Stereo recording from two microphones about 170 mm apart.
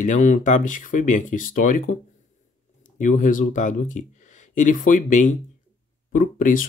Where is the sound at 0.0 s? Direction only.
45° left (ahead or behind).